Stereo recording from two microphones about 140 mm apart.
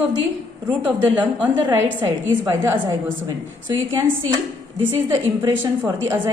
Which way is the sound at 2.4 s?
20° right (ahead or behind).